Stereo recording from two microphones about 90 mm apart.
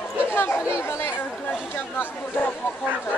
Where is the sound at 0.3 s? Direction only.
25° left (ahead or behind).